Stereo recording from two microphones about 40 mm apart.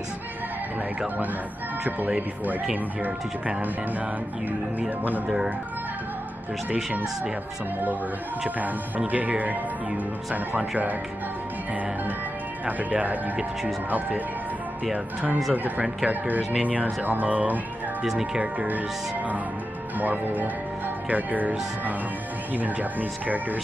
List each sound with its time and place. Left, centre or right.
1.9 s speech: right
8.5 s speech: right
12.6 s speech: right
16.1 s speech: right
18.0 s speech: centre
18.4 s speech: right
20.0 s speech: right